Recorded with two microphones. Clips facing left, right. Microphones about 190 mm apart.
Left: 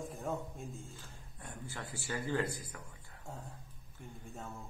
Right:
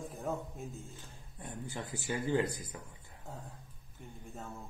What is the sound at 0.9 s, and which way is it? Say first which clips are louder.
Speech: right 2 dB; 20° right (ahead or behind).